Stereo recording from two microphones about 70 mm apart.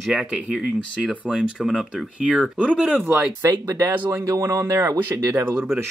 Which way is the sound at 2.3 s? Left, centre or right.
Centre.